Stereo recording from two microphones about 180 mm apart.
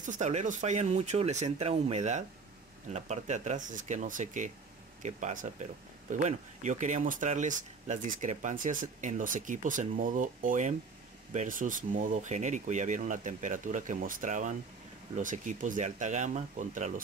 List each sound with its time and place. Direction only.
0.0 s speech: 45° right (ahead or behind)